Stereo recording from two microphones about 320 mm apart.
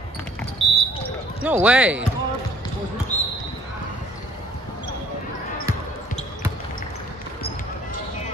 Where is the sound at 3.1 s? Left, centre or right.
Left.